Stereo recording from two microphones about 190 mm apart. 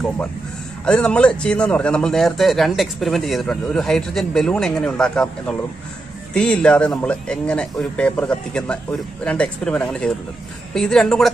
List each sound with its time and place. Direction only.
0.8 s speech: 5° left (ahead or behind)